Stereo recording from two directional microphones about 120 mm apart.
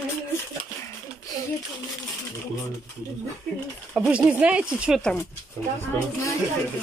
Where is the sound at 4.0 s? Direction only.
10° right (ahead or behind).